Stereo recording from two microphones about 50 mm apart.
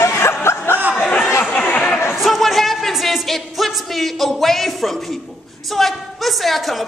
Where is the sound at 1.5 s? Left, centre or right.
Left.